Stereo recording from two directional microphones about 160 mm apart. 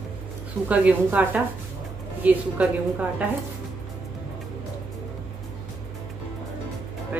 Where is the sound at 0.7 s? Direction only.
10° right (ahead or behind).